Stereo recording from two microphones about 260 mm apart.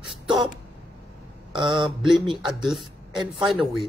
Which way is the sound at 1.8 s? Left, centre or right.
Centre.